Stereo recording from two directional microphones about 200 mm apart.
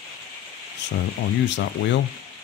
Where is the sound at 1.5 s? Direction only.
65° left (ahead or behind).